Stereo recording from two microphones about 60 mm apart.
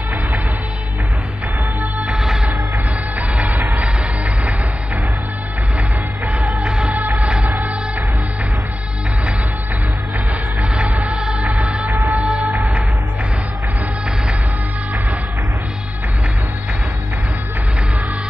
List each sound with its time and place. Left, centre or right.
2.0 s music: centre
6.2 s music: centre
10.8 s music: centre
11.4 s music: centre
12.1 s music: centre